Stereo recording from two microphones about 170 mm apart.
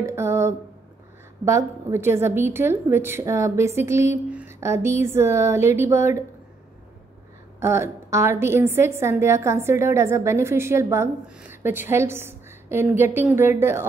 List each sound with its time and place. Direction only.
0.0 s a sound: 15° right (ahead or behind)
1.4 s a woman's voice: 15° right (ahead or behind)
7.6 s a woman's voice: 15° right (ahead or behind)